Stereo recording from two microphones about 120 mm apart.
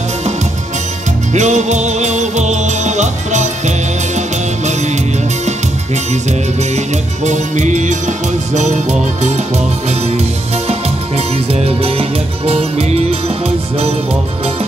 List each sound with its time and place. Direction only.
1.3 s music: 75° right (ahead or behind)
7.2 s music: 85° right
8.5 s music: 75° right (ahead or behind)
9.8 s music: 60° right (ahead or behind)